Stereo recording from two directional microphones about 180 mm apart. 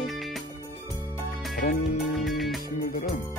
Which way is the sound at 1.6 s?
45° left (ahead or behind).